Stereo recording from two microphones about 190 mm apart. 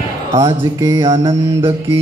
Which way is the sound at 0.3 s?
15° right (ahead or behind).